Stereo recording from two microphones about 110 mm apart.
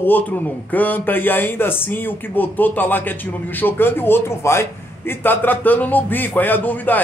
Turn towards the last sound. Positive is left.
turn(degrees=15)  # may be behind; listen again after turning